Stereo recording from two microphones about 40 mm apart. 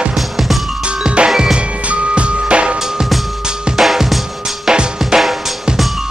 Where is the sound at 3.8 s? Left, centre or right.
Centre.